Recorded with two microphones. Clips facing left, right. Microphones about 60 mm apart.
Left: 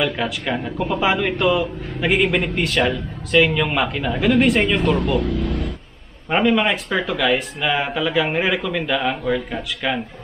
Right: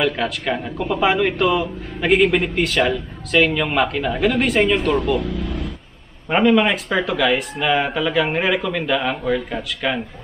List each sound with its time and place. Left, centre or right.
0.0 s speech: centre
5.2 s speech: left
6.3 s speech: centre